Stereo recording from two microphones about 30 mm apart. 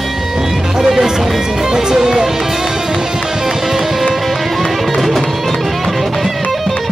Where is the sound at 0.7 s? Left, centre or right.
Centre.